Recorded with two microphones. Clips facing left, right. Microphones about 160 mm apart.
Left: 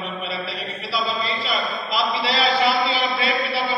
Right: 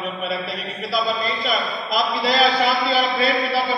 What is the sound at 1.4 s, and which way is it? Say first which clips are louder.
A man's voice: right 2 dB; 45° right (ahead or behind).